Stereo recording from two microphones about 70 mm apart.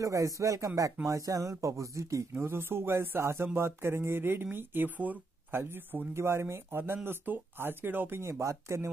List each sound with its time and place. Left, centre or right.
0.0 s speech: right
2.4 s speech: right
6.2 s speech: right